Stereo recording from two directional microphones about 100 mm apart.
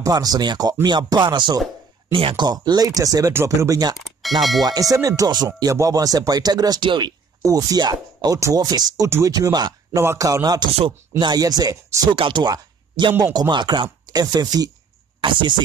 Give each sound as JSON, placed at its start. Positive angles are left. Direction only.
{"t": 0.0, "sound": "speech", "side_deg": -40}
{"t": 0.8, "sound": "music", "side_deg": -50}
{"t": 2.3, "sound": "speech", "side_deg": -45}
{"t": 4.4, "sound": "speech", "side_deg": 0}
{"t": 4.6, "sound": "speech", "side_deg": -35}
{"t": 7.4, "sound": "speech", "side_deg": -40}
{"t": 9.9, "sound": "speech", "side_deg": -30}
{"t": 12.1, "sound": "speech", "side_deg": -50}
{"t": 13.2, "sound": "music", "side_deg": -45}
{"t": 14.0, "sound": "speech", "side_deg": -40}
{"t": 15.1, "sound": "speech", "side_deg": -55}